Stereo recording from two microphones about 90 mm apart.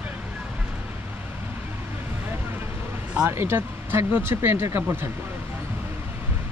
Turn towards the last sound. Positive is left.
turn(degrees=-25)  # may be behind; listen again after turning